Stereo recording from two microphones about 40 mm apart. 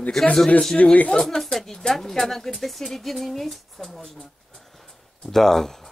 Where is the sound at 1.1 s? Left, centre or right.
Centre.